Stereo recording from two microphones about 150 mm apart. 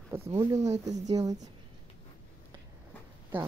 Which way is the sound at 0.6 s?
50° right (ahead or behind).